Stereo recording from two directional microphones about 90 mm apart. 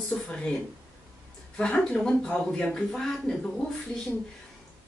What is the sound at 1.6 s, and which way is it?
A woman's voice, 10° left (ahead or behind).